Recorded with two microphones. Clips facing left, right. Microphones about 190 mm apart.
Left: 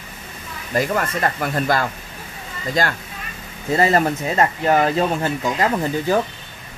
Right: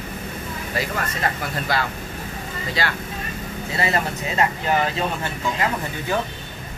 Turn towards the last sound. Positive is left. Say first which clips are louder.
# left 6 dB
turn(degrees=40)  # may be behind; listen again after turning